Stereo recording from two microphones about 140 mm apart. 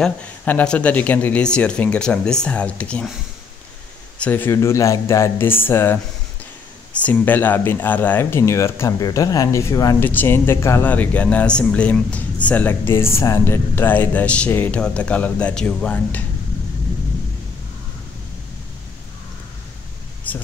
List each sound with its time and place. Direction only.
0.0 s speech: 10° left (ahead or behind)
4.2 s speech: 15° left (ahead or behind)
20.3 s a sound: 10° left (ahead or behind)